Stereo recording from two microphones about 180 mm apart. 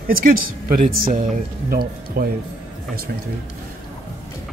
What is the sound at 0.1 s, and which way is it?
Speech, 50° right (ahead or behind).